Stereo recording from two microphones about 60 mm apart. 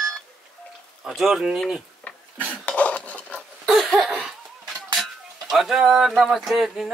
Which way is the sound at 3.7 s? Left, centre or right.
Centre.